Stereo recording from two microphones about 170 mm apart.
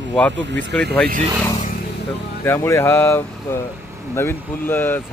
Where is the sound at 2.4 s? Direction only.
15° left (ahead or behind).